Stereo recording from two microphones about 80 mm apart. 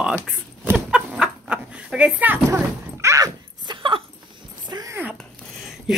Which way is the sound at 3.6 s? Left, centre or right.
Right.